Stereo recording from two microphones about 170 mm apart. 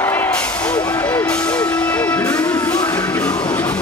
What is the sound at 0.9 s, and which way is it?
Music, 10° left (ahead or behind).